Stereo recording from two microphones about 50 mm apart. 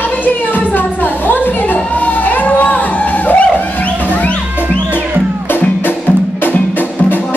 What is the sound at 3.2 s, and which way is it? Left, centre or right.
Music, left.